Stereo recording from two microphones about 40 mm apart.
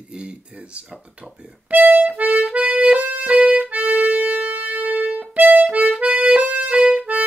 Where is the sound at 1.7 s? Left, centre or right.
Right.